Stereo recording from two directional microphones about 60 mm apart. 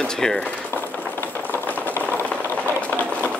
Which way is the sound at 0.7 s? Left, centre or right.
Left.